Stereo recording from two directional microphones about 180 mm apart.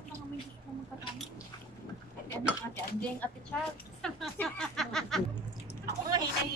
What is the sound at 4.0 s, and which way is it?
Speech, 5° left (ahead or behind).